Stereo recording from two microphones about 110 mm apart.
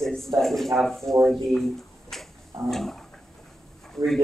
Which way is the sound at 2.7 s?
5° left (ahead or behind).